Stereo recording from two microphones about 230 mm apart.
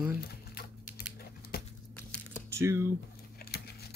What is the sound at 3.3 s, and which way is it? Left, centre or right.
Keys jangling, left.